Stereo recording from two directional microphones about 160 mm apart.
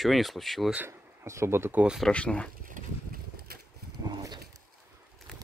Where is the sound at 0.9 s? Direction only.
15° right (ahead or behind).